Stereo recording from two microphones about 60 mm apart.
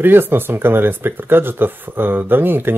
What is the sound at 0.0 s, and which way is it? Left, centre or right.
Speech, right.